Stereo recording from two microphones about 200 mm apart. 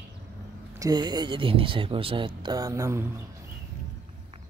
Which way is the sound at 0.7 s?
20° right (ahead or behind).